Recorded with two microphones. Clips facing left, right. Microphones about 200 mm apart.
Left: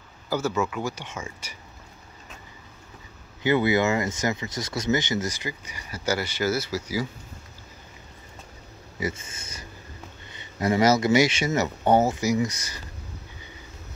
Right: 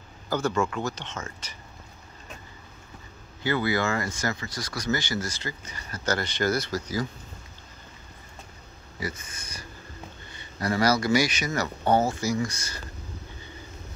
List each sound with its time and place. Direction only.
0.3 s speech: 5° left (ahead or behind)
3.4 s speech: 20° left (ahead or behind)
9.0 s speech: 25° left (ahead or behind)